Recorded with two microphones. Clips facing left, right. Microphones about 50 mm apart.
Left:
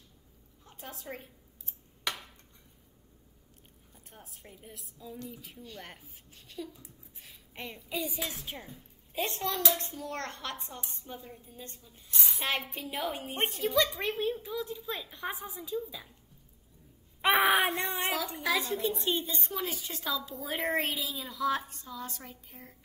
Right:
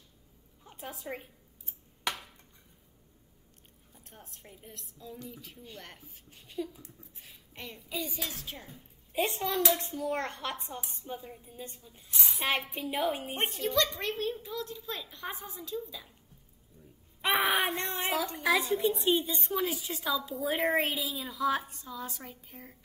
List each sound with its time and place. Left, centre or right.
0.7 s a woman's voice: centre
3.9 s a woman's voice: centre
6.3 s speech: centre
6.8 s speech: centre
7.5 s a woman's voice: centre
8.2 s a woman's voice: centre
8.6 s a child's voice: centre
17.2 s a woman's voice: centre